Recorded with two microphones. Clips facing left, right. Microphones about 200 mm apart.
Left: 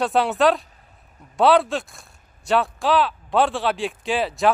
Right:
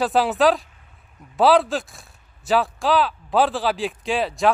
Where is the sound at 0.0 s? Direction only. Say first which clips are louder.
Right 1 dB; centre (ahead or behind).